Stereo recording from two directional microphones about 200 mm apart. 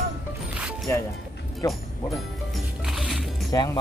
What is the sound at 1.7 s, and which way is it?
Music, centre (ahead or behind).